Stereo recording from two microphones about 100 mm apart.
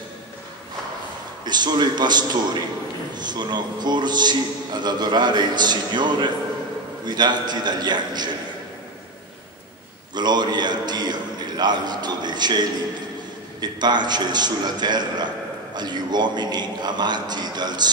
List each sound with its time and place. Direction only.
1.4 s a man's voice: 45° right (ahead or behind)
10.1 s a man's voice: 45° right (ahead or behind)